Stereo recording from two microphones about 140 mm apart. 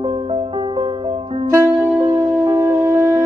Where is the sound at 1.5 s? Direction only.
20° right (ahead or behind).